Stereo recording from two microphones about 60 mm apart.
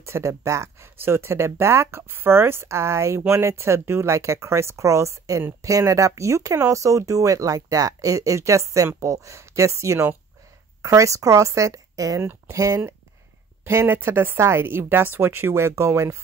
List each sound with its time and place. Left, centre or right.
0.0 s speech: right
0.9 s speech: right
13.7 s speech: right